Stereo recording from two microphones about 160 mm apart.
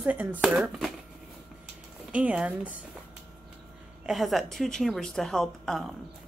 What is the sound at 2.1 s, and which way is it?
Speech, 5° right (ahead or behind).